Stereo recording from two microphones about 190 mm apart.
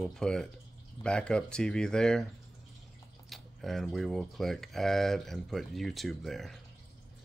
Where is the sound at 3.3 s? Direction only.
Centre (ahead or behind).